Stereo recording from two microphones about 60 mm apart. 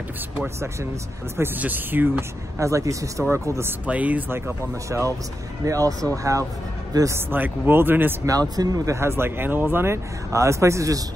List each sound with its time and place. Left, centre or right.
1.6 s speech: right
2.6 s speech: right
3.3 s speech: right
3.8 s speech: right
4.8 s speech: right
5.7 s a man's voice: right
7.2 s speech: right
8.3 s speech: right
8.9 s speech: right
10.3 s speech: right